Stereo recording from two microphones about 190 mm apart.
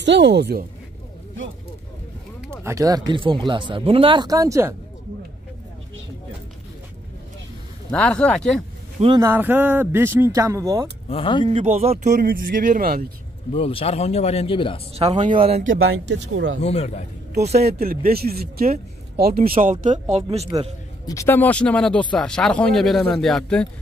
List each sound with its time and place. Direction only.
0.0 s a woman's voice: 70° right (ahead or behind)
2.6 s speech: 15° right (ahead or behind)
7.9 s speech: 5° left (ahead or behind)
9.0 s speech: 25° right (ahead or behind)
9.3 s speech: 10° right (ahead or behind)
11.1 s speech: 25° left (ahead or behind)
11.4 s speech: 35° right (ahead or behind); by 13.1 s 50° right (ahead or behind)
13.5 s speech: 30° left (ahead or behind)
15.0 s speech: 35° right (ahead or behind)
15.8 s speech: 70° right (ahead or behind)
16.6 s speech: 35° left (ahead or behind)
17.6 s speech: 55° right (ahead or behind)
19.6 s speech: 40° right (ahead or behind)
21.1 s speech: 15° left (ahead or behind)